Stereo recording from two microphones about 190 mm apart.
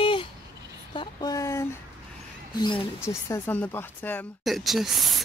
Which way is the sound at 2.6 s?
25° left (ahead or behind).